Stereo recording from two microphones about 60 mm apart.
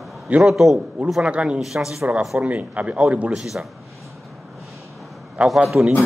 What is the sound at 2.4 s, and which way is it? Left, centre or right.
Speech, right.